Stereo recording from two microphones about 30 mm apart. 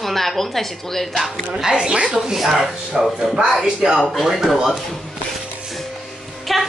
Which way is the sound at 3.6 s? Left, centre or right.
Right.